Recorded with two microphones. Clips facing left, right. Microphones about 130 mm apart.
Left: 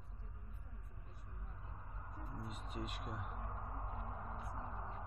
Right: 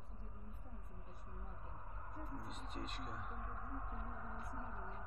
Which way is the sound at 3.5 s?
45° left (ahead or behind).